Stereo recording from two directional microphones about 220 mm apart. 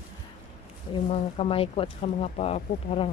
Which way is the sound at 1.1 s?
25° left (ahead or behind).